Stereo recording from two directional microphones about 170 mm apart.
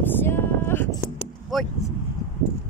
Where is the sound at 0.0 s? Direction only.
10° left (ahead or behind).